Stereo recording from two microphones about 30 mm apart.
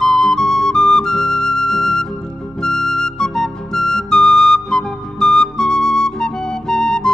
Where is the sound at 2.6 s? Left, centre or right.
Centre.